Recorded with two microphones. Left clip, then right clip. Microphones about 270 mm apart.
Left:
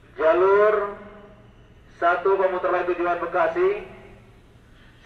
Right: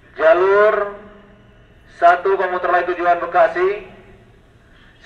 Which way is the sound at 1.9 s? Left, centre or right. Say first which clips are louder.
Right 7 dB; right.